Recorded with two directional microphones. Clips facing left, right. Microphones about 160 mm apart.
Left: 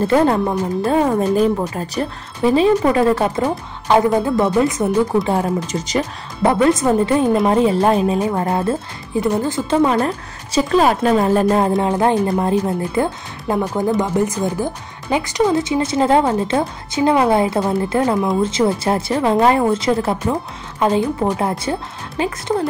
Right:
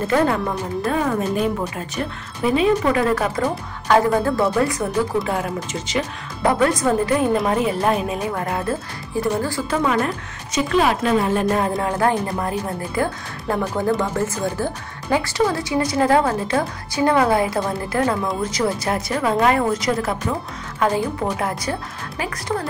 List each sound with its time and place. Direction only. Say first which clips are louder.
0.1 s a woman's voice: left 2 dB; 30° left (ahead or behind)
5.4 s a woman's voice: left 5 dB; 40° left (ahead or behind)
6.4 s a woman's voice: left 4 dB; 20° left (ahead or behind)
9.1 s speech: left 3 dB; 20° left (ahead or behind)
9.8 s a woman's voice: left 5 dB; 30° left (ahead or behind)